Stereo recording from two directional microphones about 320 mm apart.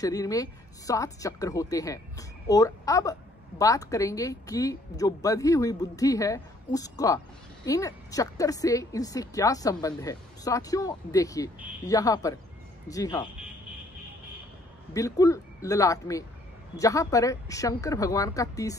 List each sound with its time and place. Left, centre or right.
0.0 s speech: centre
15.0 s speech: centre